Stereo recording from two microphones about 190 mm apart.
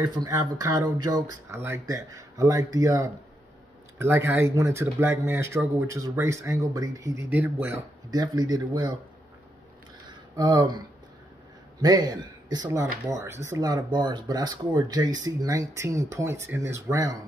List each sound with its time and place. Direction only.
0.0 s speech: 20° right (ahead or behind)
10.3 s speech: 20° right (ahead or behind)
11.8 s speech: 20° right (ahead or behind)